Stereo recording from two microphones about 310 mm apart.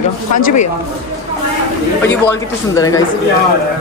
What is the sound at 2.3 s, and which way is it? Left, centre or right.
Speech, centre.